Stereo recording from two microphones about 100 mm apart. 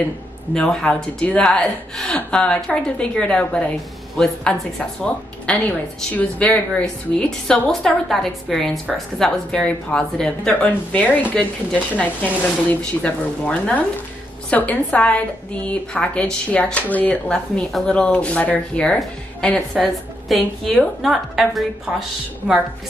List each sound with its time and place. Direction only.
0.6 s a woman's voice: 10° left (ahead or behind)
19.7 s a woman's voice: centre (ahead or behind)